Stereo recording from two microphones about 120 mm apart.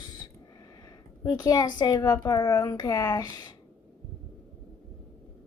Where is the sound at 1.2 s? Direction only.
30° left (ahead or behind).